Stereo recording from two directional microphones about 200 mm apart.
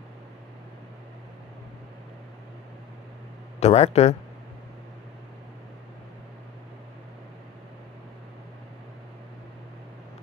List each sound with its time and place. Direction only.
3.5 s speech: 30° left (ahead or behind)